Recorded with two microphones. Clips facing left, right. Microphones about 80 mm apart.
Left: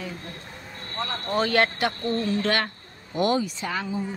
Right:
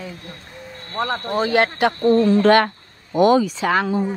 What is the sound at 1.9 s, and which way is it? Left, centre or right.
Speech, right.